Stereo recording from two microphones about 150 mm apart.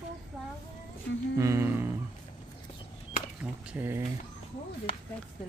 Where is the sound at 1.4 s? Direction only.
15° right (ahead or behind).